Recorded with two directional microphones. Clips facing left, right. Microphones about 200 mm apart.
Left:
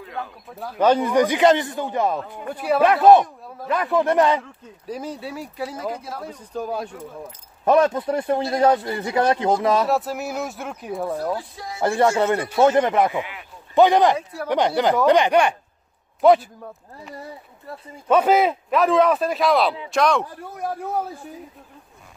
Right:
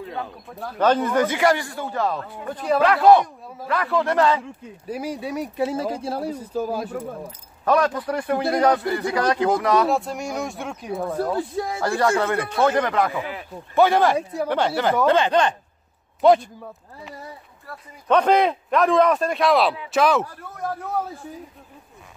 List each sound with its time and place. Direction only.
0.5 s speech: centre (ahead or behind)
2.8 s a man's voice: 20° left (ahead or behind)
4.8 s speech: 10° right (ahead or behind); by 6.3 s 30° right (ahead or behind)
6.3 s a man's voice: 5° right (ahead or behind)
7.6 s a man's voice: 25° left (ahead or behind)
9.8 s a man's voice: 5° left (ahead or behind)
11.9 s a man's voice: 25° left (ahead or behind)
13.2 s a sound: 35° right (ahead or behind)
13.7 s speech: 15° left (ahead or behind)
16.2 s a man's voice: centre (ahead or behind)
17.7 s a man's voice: 20° left (ahead or behind)
18.0 s a man's voice: 5° left (ahead or behind)
20.2 s speech: 15° left (ahead or behind)